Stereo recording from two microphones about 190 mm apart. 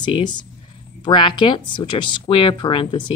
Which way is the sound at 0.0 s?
25° left (ahead or behind).